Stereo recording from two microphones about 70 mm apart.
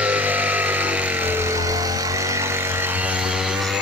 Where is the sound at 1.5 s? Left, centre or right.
Right.